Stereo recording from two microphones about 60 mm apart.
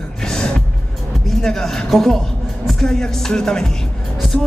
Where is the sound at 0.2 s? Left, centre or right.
Centre.